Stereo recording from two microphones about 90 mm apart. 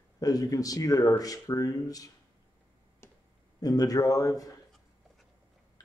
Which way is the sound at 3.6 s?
45° left (ahead or behind).